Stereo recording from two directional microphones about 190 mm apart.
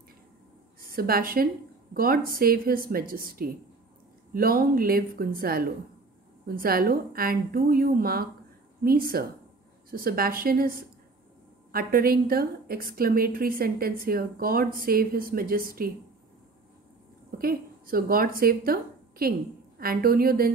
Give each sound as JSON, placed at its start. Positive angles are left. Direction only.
{"t": 0.7, "sound": "a woman's voice", "side_deg": -50}
{"t": 17.4, "sound": "a woman's voice", "side_deg": -50}